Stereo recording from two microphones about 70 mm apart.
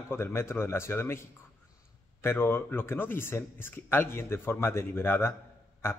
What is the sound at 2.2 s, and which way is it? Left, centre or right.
A man's voice, left.